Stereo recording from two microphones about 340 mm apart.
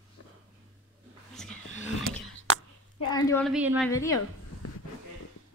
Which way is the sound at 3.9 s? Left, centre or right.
Centre.